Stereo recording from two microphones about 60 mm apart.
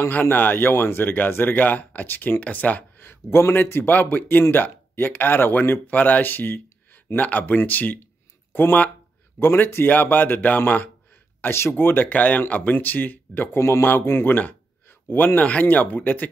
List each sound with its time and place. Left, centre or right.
0.1 s speech: left
3.1 s speech: left
11.4 s speech: left
13.6 s speech: left